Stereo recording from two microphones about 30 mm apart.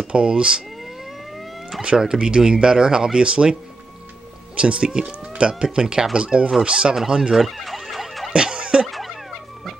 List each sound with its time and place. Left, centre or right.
0.1 s speech: right
2.0 s speech: right
3.2 s speech: right
4.6 s speech: right
5.0 s a sound: right
5.5 s speech: right
7.3 s fowl: centre
7.9 s emergency vehicle: centre
8.3 s a sound: right
8.8 s a sound: centre